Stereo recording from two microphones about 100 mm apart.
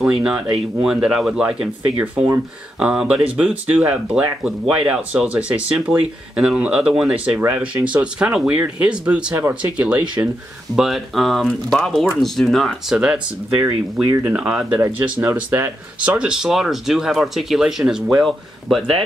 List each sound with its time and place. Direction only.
0.0 s speech: 10° right (ahead or behind)
10.8 s speech: centre (ahead or behind)
14.8 s speech: 15° right (ahead or behind)
16.2 s speech: 5° right (ahead or behind)